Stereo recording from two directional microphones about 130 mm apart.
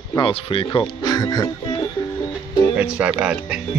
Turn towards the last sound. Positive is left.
turn(degrees=-5)  # may be behind; listen again after turning